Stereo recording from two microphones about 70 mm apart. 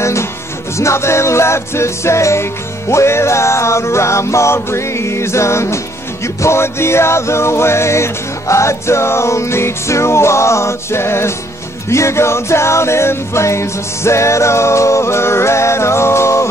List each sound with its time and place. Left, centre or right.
0.0 s music: left